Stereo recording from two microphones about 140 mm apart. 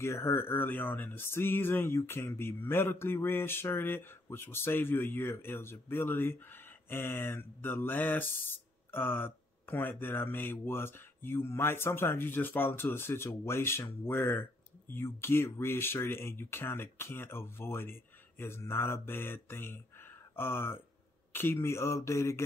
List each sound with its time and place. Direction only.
0.0 s speech: 20° left (ahead or behind)